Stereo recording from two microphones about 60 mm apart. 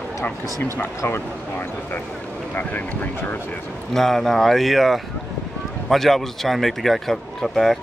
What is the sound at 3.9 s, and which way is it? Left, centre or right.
Speech, centre.